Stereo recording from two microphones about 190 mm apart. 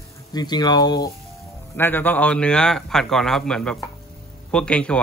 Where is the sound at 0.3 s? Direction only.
20° left (ahead or behind).